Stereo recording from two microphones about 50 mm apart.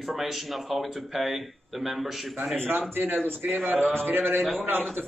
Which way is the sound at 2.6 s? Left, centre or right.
Right.